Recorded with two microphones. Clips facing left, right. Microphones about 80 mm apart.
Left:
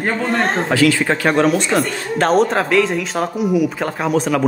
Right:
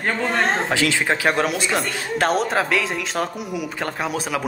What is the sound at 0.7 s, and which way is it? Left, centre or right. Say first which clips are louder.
Speech: left 7 dB; right.